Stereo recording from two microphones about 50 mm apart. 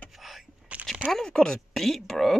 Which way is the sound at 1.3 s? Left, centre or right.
Centre.